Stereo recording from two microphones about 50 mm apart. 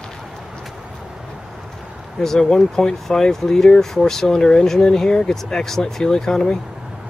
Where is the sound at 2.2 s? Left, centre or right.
Centre.